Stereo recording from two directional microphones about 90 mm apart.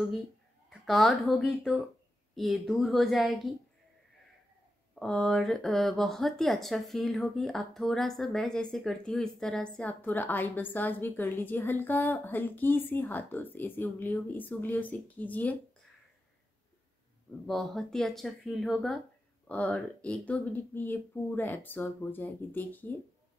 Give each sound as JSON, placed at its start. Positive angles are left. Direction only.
{"t": 0.7, "sound": "speech", "side_deg": 0}
{"t": 4.9, "sound": "speech", "side_deg": 5}
{"t": 9.8, "sound": "a woman's voice", "side_deg": 20}
{"t": 17.5, "sound": "speech", "side_deg": 0}
{"t": 19.4, "sound": "a woman's voice", "side_deg": 15}